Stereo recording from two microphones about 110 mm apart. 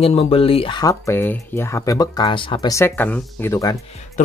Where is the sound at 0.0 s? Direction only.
65° left (ahead or behind).